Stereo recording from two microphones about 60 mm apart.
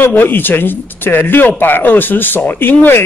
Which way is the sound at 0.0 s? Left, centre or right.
Left.